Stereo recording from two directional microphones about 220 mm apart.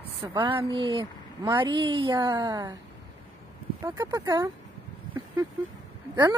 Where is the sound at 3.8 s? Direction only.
15° right (ahead or behind).